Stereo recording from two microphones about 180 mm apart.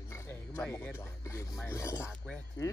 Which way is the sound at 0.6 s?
10° left (ahead or behind).